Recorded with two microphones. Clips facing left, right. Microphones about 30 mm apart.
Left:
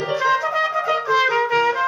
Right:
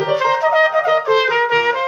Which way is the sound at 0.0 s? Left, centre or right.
Right.